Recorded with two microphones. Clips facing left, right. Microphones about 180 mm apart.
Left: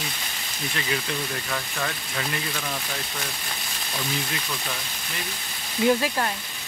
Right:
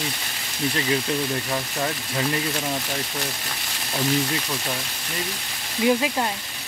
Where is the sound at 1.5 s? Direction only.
25° right (ahead or behind).